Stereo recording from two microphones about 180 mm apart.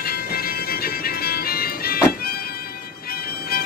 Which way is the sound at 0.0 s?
55° left (ahead or behind).